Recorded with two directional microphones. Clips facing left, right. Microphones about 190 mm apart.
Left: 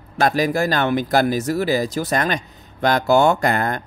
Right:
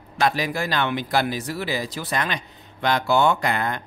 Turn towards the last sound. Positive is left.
turn(degrees=45)  # may be behind; listen again after turning